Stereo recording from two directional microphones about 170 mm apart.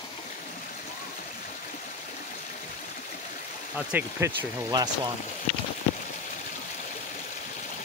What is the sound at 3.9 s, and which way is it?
Speech, 10° right (ahead or behind).